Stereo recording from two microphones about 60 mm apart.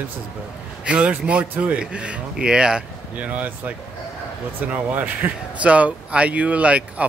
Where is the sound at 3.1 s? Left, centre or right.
Right.